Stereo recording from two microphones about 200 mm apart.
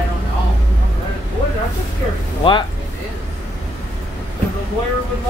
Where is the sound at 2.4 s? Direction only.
25° left (ahead or behind).